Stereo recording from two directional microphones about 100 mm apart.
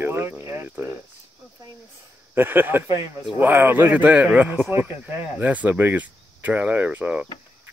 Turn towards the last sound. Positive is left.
turn(degrees=-15)  # may be behind; listen again after turning